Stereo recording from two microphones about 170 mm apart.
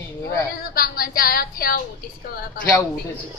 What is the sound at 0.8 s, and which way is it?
Speech, 60° left (ahead or behind).